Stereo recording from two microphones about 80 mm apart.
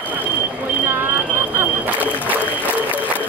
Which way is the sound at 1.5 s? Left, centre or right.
Right.